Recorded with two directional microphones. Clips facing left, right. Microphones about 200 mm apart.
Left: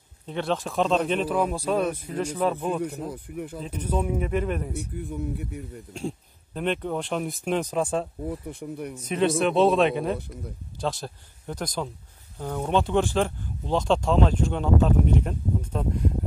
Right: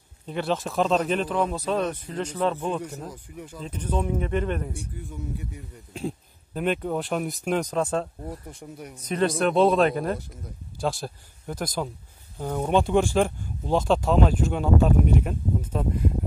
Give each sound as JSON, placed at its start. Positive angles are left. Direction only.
{"t": 0.3, "sound": "speech", "side_deg": -5}
{"t": 2.8, "sound": "speech", "side_deg": 60}
{"t": 3.6, "sound": "speech", "side_deg": 10}
{"t": 4.7, "sound": "speech", "side_deg": 60}
{"t": 5.9, "sound": "speech", "side_deg": -5}
{"t": 8.5, "sound": "speech", "side_deg": 60}
{"t": 9.1, "sound": "speech", "side_deg": 0}